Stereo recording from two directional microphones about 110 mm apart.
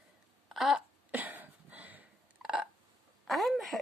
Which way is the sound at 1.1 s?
15° right (ahead or behind).